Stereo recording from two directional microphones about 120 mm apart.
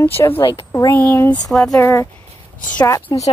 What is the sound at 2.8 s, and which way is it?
Speech, 35° left (ahead or behind).